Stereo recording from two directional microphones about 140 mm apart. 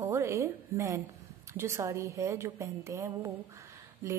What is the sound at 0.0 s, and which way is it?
A woman's voice, 20° right (ahead or behind).